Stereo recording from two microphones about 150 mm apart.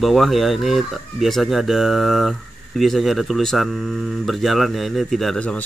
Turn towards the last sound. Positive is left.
turn(degrees=5)  # may be behind; listen again after turning